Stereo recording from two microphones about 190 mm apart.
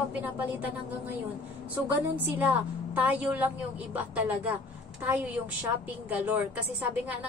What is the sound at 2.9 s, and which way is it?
A woman's voice, 10° right (ahead or behind).